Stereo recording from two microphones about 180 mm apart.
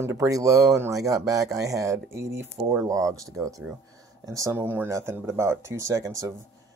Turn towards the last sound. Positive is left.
turn(degrees=-20)  # may be behind; listen again after turning